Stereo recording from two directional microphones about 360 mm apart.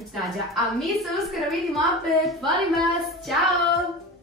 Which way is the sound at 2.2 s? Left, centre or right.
Centre.